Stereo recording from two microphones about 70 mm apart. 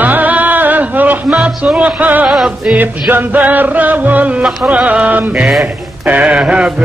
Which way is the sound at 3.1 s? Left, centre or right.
Right.